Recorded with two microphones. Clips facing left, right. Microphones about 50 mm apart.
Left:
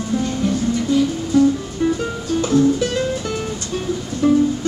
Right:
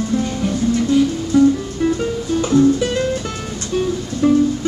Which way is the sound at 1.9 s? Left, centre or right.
Centre.